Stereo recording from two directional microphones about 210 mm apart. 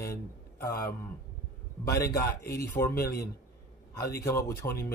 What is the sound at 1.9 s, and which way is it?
Speech, 15° left (ahead or behind).